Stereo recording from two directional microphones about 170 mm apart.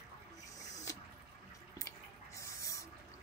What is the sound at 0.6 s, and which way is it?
Owl, 20° left (ahead or behind).